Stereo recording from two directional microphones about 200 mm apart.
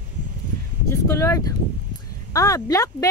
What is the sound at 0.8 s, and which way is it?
Speech, 15° left (ahead or behind).